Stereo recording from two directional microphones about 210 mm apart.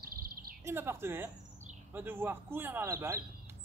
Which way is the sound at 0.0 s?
45° right (ahead or behind).